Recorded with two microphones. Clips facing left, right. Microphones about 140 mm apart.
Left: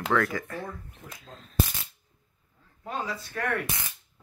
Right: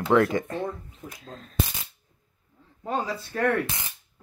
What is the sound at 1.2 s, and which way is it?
Speech, 45° right (ahead or behind).